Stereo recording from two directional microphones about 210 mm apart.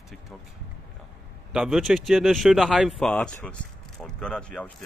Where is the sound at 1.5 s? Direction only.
Centre (ahead or behind).